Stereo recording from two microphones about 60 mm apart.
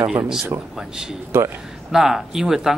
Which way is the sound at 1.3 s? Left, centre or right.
Right.